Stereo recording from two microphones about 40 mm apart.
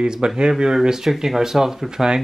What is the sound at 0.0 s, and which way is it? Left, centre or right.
Speech, centre.